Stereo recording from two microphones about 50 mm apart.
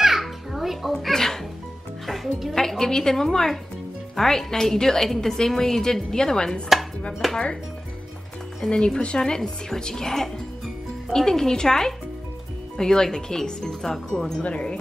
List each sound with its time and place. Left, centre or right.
0.0 s music: centre
1.0 s music: centre
2.5 s a woman's voice: centre
7.2 s speech: centre
8.5 s a woman's voice: centre
14.4 s wind chime: left